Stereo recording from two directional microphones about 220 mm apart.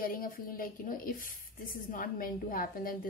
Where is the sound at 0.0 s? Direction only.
40° left (ahead or behind).